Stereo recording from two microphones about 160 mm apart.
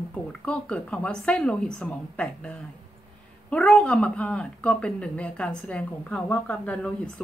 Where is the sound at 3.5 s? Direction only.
5° left (ahead or behind).